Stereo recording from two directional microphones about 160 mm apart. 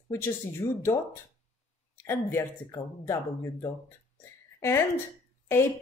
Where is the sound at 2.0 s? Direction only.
15° left (ahead or behind).